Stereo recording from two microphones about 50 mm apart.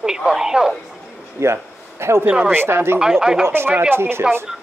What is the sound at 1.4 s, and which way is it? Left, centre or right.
Speech, right.